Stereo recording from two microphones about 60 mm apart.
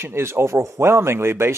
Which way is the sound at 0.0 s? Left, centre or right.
Right.